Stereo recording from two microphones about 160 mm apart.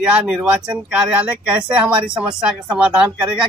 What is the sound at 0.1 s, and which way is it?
Speech, 5° right (ahead or behind).